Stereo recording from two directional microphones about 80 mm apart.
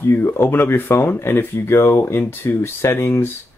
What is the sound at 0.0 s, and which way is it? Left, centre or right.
Speech, left.